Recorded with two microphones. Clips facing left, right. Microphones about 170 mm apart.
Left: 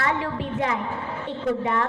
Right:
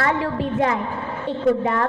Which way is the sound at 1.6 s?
50° right (ahead or behind).